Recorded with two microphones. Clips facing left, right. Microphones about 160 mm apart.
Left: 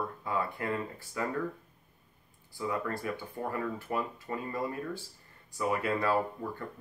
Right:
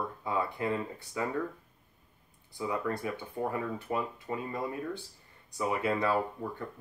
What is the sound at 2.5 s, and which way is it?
Speech, 20° right (ahead or behind).